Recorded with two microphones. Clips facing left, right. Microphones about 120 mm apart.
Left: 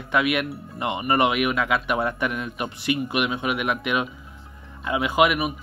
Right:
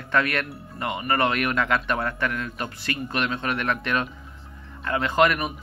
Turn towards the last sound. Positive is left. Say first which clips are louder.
# left 1 dB
turn(degrees=10)  # may be behind; listen again after turning